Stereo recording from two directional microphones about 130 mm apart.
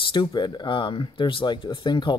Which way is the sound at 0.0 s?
40° left (ahead or behind).